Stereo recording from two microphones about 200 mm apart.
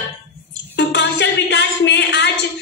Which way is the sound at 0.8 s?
60° left (ahead or behind).